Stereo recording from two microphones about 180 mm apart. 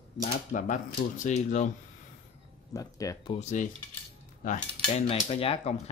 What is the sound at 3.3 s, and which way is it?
Cutlery, 40° left (ahead or behind).